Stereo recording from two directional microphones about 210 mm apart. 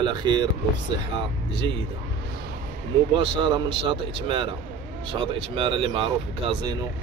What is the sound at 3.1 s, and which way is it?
Speech, 20° right (ahead or behind).